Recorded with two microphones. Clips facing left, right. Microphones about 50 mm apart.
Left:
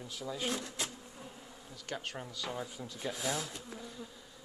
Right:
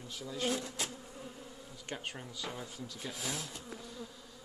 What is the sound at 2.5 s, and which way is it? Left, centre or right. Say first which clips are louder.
Speech: left 3 dB; centre.